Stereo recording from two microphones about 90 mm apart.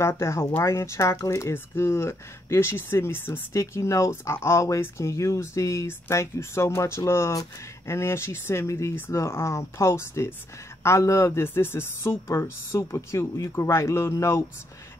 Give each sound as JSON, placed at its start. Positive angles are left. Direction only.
{"t": 0.0, "sound": "speech", "side_deg": 30}